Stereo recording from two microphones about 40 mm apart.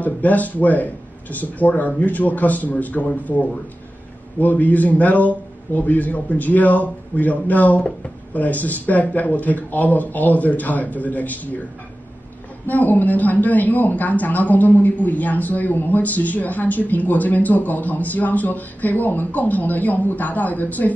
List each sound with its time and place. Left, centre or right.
0.0 s a man's voice: left
12.6 s a man's voice: left